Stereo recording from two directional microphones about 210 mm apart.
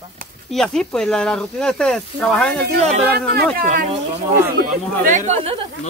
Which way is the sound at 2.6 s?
50° right (ahead or behind).